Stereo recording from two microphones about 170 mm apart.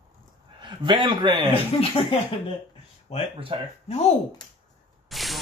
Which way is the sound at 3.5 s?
30° right (ahead or behind).